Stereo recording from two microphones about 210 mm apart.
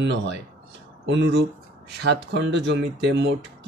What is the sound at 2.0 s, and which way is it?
Speech, 55° right (ahead or behind).